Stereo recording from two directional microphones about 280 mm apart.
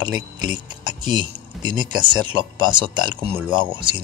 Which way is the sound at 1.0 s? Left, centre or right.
Centre.